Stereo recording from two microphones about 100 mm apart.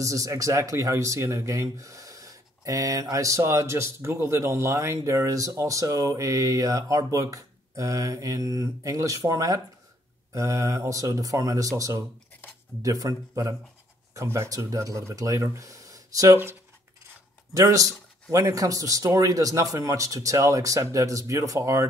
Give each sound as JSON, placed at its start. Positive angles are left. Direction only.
{"t": 0.0, "sound": "speech", "side_deg": -35}
{"t": 17.6, "sound": "speech", "side_deg": -35}